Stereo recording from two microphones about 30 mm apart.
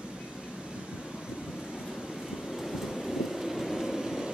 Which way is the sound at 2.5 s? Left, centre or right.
Centre.